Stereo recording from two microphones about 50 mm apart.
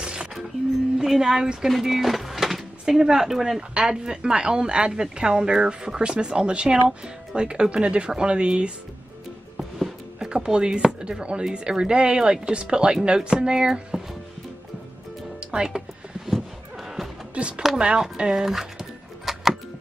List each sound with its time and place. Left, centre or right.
0.0 s a sound: centre
0.9 s speech: centre
1.7 s a sound: centre
2.8 s speech: centre
9.6 s music: centre
10.1 s speech: centre
15.5 s speech: centre
17.3 s speech: right
18.1 s a sound: centre